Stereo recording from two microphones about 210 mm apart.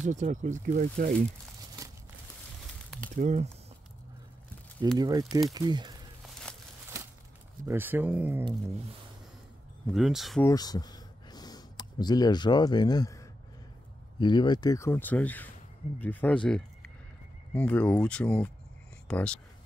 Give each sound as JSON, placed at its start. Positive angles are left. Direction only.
{"t": 0.0, "sound": "speech", "side_deg": -35}
{"t": 3.2, "sound": "speech", "side_deg": -30}
{"t": 4.9, "sound": "speech", "side_deg": -20}
{"t": 7.6, "sound": "speech", "side_deg": -10}
{"t": 9.9, "sound": "speech", "side_deg": 0}
{"t": 10.4, "sound": "speech", "side_deg": 20}